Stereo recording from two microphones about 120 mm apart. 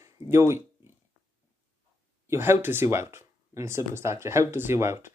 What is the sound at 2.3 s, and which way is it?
Speech, 20° right (ahead or behind).